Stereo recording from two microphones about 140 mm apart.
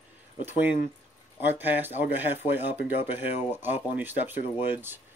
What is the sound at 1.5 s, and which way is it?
Speech, 15° right (ahead or behind).